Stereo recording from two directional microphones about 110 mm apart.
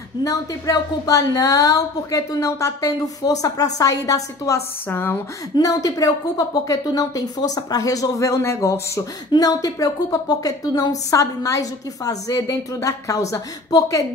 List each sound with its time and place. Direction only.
0.2 s a woman's voice: 30° left (ahead or behind)
4.8 s speech: 20° left (ahead or behind)
5.7 s a woman's voice: 35° left (ahead or behind)